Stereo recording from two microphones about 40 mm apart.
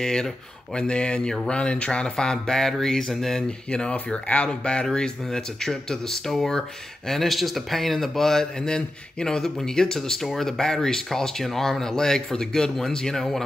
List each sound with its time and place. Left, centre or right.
0.0 s speech: centre
3.4 s speech: left
8.5 s speech: centre
10.2 s speech: centre
10.6 s speech: centre